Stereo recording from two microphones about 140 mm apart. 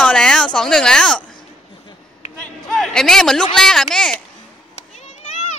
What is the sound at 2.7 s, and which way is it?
A man's voice, 5° left (ahead or behind).